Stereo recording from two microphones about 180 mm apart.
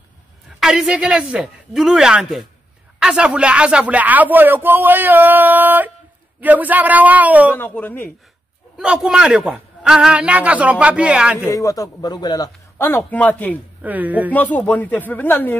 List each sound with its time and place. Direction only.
0.6 s a man's voice: 5° right (ahead or behind)
7.5 s a man's voice: 10° left (ahead or behind)
8.7 s a man's voice: 5° right (ahead or behind)
11.5 s a man's voice: 20° left (ahead or behind)
13.8 s speech: 10° right (ahead or behind)
14.3 s a man's voice: 10° left (ahead or behind)